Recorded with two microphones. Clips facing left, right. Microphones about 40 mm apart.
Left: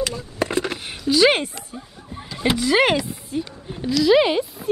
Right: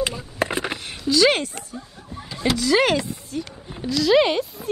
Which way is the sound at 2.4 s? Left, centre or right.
Left.